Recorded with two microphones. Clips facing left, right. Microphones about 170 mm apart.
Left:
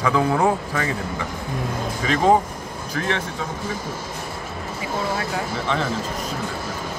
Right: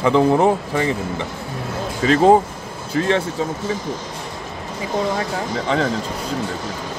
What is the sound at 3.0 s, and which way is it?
Speech, 35° right (ahead or behind).